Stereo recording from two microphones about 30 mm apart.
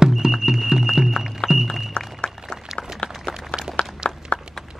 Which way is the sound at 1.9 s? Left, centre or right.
Left.